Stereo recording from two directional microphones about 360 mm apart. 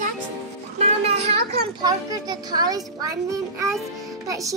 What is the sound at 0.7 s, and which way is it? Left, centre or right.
A child's voice, centre.